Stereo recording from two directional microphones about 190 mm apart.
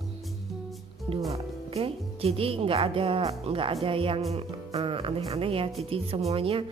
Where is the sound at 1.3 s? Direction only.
30° right (ahead or behind).